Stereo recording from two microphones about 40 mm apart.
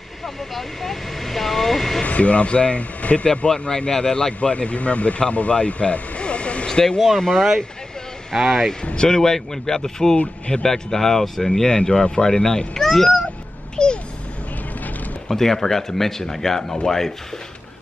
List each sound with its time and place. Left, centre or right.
0.6 s speech: centre
2.0 s speech: left
3.4 s speech: left
6.7 s speech: centre
8.4 s speech: centre
8.9 s speech: centre
13.8 s a sound: left
15.2 s speech: centre